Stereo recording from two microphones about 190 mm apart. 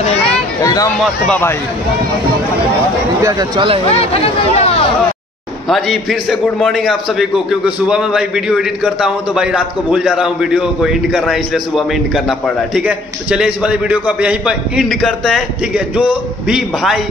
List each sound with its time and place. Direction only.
0.6 s speech: 15° left (ahead or behind)
3.2 s speech: 20° right (ahead or behind)
3.9 s speech: 35° left (ahead or behind)
5.7 s a man's voice: centre (ahead or behind)